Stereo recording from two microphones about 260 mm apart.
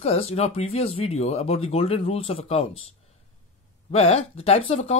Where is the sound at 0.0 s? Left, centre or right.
Left.